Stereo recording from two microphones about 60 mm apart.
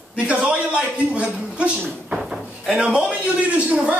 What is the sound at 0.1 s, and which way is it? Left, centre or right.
A man's voice, centre.